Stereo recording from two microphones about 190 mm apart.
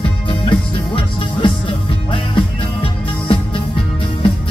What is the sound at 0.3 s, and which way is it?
Music, 25° left (ahead or behind).